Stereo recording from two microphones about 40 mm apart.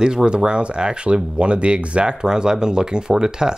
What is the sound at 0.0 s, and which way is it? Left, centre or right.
Speech, centre.